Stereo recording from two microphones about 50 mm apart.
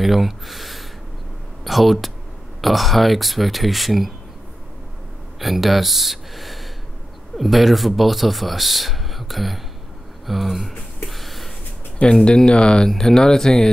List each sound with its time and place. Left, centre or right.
0.0 s speech: centre
5.4 s speech: centre
11.1 s a sound: centre
12.0 s speech: left